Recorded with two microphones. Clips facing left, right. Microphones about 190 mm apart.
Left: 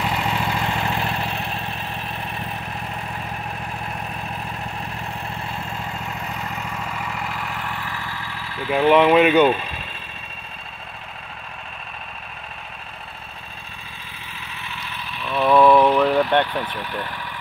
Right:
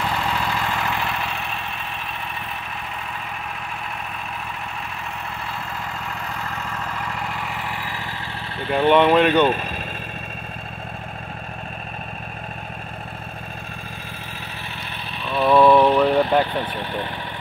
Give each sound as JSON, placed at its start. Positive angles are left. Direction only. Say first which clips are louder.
{"t": 0.0, "sound": "vehicle", "louder": "even", "side_deg": 20}
{"t": 8.6, "sound": "speech", "louder": "left 1 dB", "side_deg": 5}
{"t": 15.3, "sound": "vehicle", "louder": "even", "side_deg": 0}
{"t": 16.6, "sound": "speech", "louder": "right 2 dB", "side_deg": -25}